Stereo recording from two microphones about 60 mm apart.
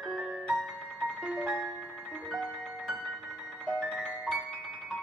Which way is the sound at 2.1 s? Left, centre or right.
Centre.